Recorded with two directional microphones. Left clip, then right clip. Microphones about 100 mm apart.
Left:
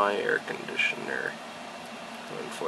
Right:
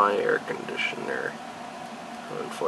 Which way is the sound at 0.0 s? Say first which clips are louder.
Right 3 dB; 25° left (ahead or behind).